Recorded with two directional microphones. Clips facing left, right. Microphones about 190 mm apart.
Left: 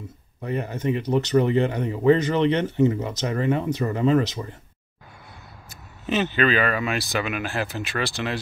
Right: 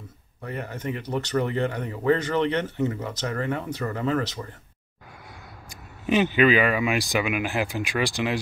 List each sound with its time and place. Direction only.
0.4 s speech: 20° left (ahead or behind)
5.7 s speech: 15° right (ahead or behind)